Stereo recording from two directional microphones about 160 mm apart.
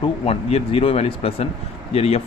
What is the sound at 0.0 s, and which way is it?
Speech, 40° left (ahead or behind).